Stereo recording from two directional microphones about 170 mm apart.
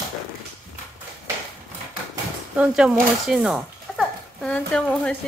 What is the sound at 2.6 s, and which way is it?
Speech, 5° right (ahead or behind).